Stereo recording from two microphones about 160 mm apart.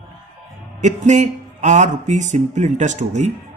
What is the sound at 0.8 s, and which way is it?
Speech, 50° right (ahead or behind).